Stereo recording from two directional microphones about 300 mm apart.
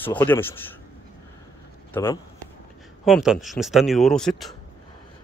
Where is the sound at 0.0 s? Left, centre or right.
Centre.